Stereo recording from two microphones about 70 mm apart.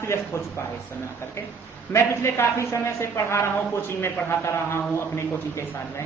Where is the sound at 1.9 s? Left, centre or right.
Left.